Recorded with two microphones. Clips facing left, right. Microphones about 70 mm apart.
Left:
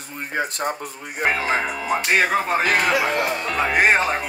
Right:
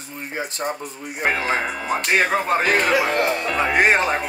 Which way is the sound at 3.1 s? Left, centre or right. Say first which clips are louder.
Right 2 dB; right.